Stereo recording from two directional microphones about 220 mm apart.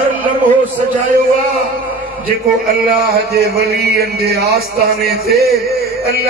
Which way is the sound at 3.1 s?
45° right (ahead or behind).